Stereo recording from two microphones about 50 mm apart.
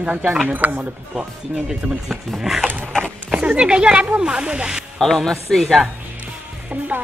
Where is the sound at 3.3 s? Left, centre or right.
Right.